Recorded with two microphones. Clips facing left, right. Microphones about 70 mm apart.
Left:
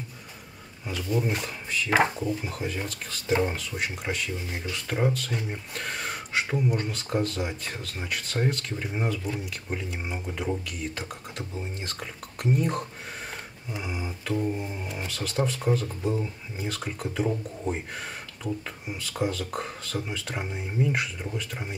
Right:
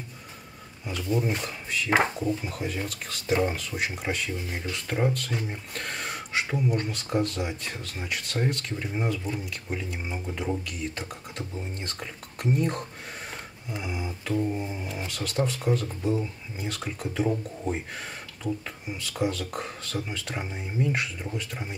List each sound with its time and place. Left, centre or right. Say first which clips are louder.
0.8 s speech: even; centre
13.7 s a sound: right 1 dB; centre
14.2 s speech: right 1 dB; centre